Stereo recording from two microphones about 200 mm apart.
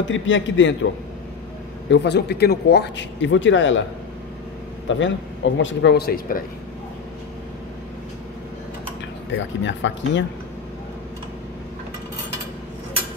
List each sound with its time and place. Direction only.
0.0 s speech: 70° left (ahead or behind)
1.9 s speech: 60° left (ahead or behind)
4.8 s speech: 70° left (ahead or behind); by 6.4 s 45° left (ahead or behind)
9.3 s speech: 70° left (ahead or behind)